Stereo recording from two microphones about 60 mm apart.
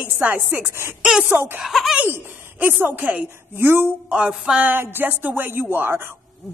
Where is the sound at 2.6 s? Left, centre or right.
Right.